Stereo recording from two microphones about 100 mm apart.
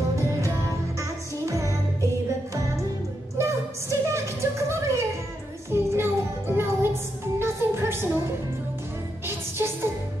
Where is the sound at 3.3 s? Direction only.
30° right (ahead or behind).